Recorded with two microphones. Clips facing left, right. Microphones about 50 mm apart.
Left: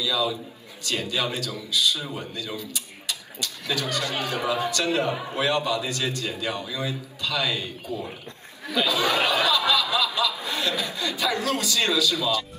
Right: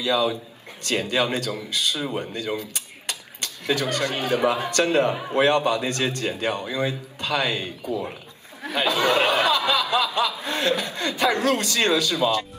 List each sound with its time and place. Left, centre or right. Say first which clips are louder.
0.0 s speech: right 3 dB; right